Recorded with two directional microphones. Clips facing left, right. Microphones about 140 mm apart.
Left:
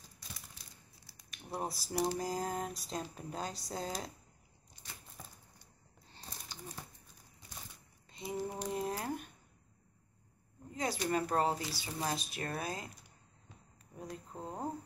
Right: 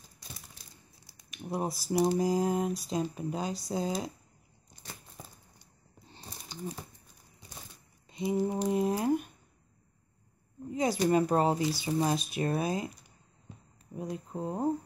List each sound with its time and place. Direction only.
1.0 s speech: 15° right (ahead or behind)
6.0 s a sound: 20° right (ahead or behind)
8.1 s speech: 20° right (ahead or behind)
10.7 s speech: 15° right (ahead or behind)
13.9 s speech: 15° right (ahead or behind)